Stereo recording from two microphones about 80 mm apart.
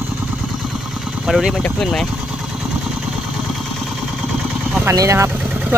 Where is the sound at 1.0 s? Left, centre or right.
Centre.